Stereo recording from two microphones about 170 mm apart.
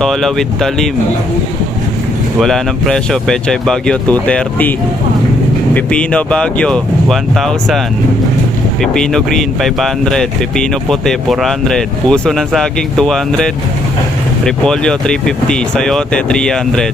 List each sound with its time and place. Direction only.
0.0 s speech: centre (ahead or behind)
2.4 s speech: 5° left (ahead or behind)
5.8 s speech: 5° left (ahead or behind)
8.8 s speech: 5° left (ahead or behind)